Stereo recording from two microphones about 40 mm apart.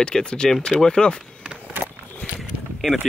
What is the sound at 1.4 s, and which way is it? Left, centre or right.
Skateboard, right.